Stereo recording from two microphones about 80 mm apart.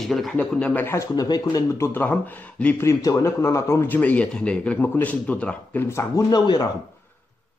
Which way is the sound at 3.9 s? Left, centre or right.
Centre.